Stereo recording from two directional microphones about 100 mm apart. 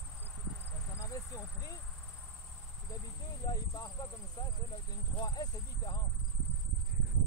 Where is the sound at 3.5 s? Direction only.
45° left (ahead or behind).